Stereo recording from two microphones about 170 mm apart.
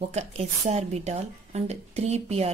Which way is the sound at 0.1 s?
40° right (ahead or behind).